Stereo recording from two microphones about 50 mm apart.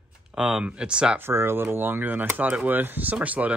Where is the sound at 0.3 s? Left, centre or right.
Centre.